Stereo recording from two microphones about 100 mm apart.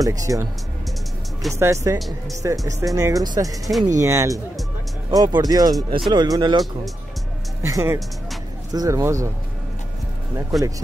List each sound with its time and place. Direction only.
0.0 s speech: 35° right (ahead or behind)
1.5 s speech: 30° right (ahead or behind)
2.0 s speech: centre (ahead or behind)
2.4 s speech: 35° right (ahead or behind)
5.1 s speech: 40° right (ahead or behind)
7.6 s speech: 30° right (ahead or behind)
10.5 s speech: centre (ahead or behind)